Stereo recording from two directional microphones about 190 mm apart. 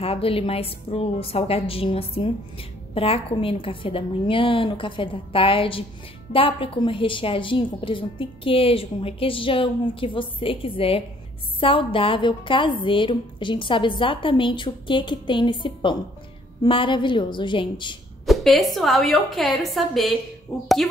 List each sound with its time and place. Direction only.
0.0 s a woman's voice: 30° left (ahead or behind)
18.2 s a woman's voice: centre (ahead or behind)